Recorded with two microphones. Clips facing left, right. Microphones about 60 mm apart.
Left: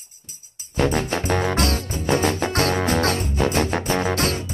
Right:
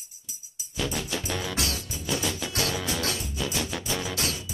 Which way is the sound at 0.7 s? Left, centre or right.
Left.